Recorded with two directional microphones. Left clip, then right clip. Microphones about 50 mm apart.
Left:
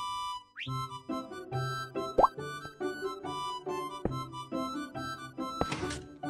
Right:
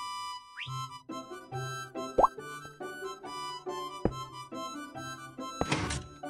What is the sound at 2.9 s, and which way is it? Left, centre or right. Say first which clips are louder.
Music: left 3 dB; left.